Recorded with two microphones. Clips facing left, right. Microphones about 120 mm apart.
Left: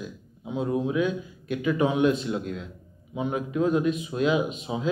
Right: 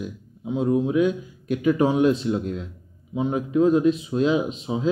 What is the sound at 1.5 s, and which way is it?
A man's voice, 40° right (ahead or behind).